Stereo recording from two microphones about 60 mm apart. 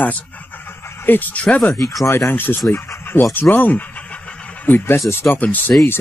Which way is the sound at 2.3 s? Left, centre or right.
Left.